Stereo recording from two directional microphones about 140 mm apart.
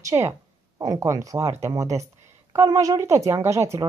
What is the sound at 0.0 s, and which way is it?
Speech, 20° right (ahead or behind).